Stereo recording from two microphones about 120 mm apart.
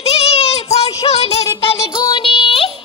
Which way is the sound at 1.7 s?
35° left (ahead or behind).